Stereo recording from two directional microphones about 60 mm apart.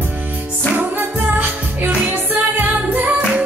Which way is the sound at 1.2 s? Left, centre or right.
Right.